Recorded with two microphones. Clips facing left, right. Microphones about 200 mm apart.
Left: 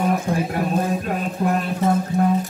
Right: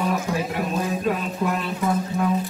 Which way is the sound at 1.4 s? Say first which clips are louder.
Left 4 dB; 45° left (ahead or behind).